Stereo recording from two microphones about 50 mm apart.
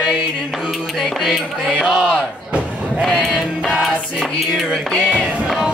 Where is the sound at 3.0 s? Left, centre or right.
Centre.